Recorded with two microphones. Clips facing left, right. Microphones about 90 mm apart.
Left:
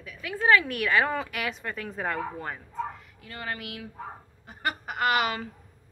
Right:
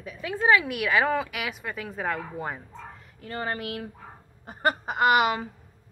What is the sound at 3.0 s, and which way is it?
Speech, 35° right (ahead or behind).